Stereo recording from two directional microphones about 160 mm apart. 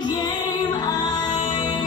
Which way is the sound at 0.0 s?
25° left (ahead or behind).